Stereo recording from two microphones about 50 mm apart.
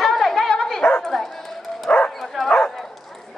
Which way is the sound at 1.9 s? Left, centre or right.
Left.